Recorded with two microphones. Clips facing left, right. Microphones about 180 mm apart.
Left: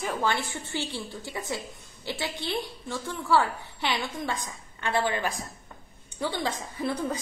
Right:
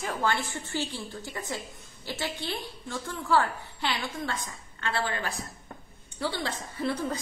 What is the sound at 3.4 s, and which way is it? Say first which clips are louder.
A woman's voice: left 1 dB; 15° left (ahead or behind).